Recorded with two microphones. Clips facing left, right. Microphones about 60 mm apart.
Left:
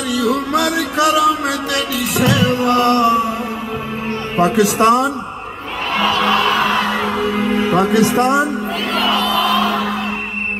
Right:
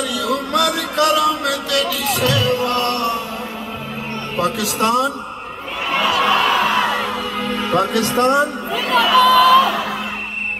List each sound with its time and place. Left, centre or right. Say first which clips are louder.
0.1 s a sound: left 7 dB; centre
2.0 s music: left 3 dB; centre
4.6 s a man's voice: left 6 dB; left
5.9 s music: left 1 dB; centre